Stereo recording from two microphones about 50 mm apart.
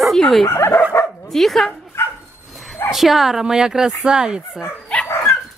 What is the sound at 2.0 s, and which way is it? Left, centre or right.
Dog, left.